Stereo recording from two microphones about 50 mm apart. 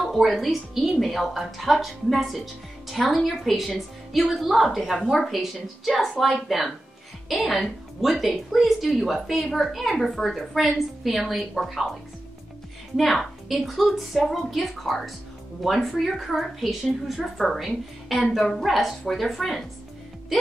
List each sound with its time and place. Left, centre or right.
0.1 s a woman's voice: centre
12.9 s a woman's voice: centre